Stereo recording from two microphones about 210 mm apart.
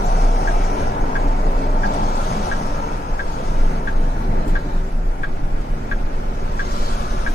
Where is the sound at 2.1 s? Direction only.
50° left (ahead or behind).